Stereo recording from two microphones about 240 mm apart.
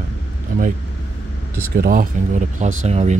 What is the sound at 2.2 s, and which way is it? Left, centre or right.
Speech, right.